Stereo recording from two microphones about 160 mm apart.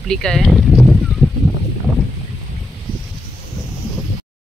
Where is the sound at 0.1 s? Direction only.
5° left (ahead or behind).